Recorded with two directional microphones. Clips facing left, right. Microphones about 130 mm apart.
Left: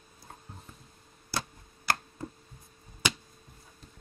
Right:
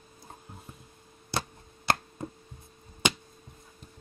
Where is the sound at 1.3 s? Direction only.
20° right (ahead or behind).